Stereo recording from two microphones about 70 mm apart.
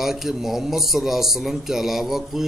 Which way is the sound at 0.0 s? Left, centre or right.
Centre.